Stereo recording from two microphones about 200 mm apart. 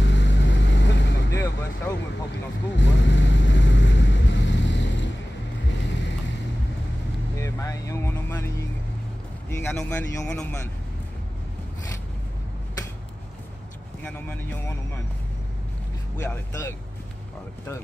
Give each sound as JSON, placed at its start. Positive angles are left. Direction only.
{"t": 0.0, "sound": "vehicle", "side_deg": 65}
{"t": 1.3, "sound": "vehicle", "side_deg": 15}
{"t": 2.7, "sound": "vehicle", "side_deg": 65}
{"t": 7.3, "sound": "vehicle", "side_deg": 15}
{"t": 9.5, "sound": "speech", "side_deg": 5}
{"t": 14.0, "sound": "speech", "side_deg": 10}
{"t": 16.2, "sound": "speech", "side_deg": 10}